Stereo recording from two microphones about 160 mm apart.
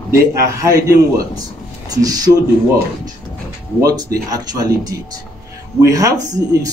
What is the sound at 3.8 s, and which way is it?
Speech, 20° right (ahead or behind).